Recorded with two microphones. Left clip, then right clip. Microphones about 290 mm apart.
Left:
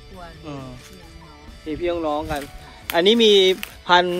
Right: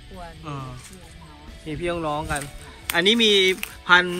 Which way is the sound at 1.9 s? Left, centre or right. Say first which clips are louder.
Left 2 dB; left.